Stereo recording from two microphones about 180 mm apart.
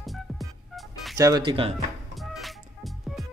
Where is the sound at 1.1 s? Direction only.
20° right (ahead or behind).